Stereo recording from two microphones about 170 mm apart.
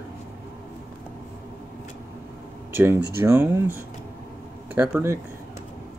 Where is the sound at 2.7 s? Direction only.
15° right (ahead or behind).